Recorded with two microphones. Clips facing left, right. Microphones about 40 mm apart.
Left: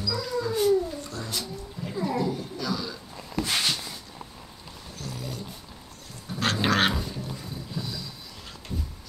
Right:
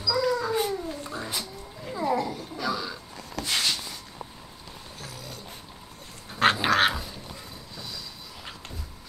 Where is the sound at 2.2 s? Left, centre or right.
Centre.